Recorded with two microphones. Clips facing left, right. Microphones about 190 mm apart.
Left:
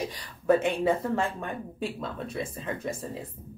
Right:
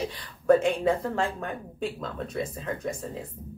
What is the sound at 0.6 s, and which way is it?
Speech, centre (ahead or behind).